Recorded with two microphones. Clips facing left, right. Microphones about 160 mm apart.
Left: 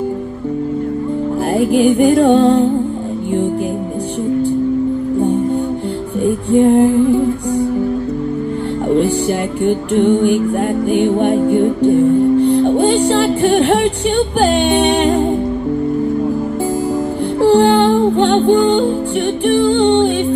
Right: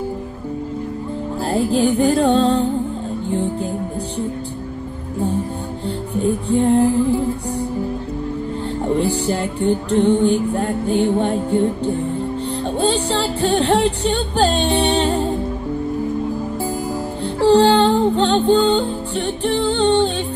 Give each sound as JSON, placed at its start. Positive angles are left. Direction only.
{"t": 1.5, "sound": "music", "side_deg": 15}
{"t": 6.5, "sound": "music", "side_deg": 15}
{"t": 8.8, "sound": "music", "side_deg": 15}
{"t": 17.4, "sound": "music", "side_deg": 15}